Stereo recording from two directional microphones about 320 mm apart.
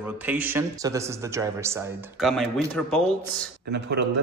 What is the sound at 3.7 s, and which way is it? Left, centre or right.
Speech, right.